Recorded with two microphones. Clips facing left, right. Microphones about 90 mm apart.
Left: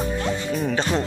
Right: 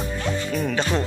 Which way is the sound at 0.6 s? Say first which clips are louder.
Left 1 dB; 30° left (ahead or behind).